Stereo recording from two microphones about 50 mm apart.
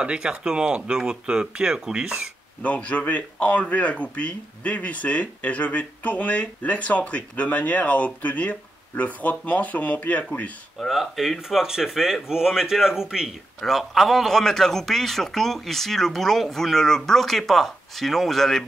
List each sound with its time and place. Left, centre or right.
0.0 s speech: centre
2.6 s speech: left
10.8 s speech: centre
13.7 s a man's voice: centre